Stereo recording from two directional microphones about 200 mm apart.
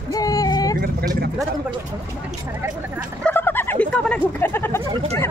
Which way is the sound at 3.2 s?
10° left (ahead or behind).